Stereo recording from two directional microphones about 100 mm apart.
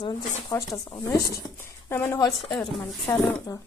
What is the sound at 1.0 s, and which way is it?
Speech, 30° left (ahead or behind).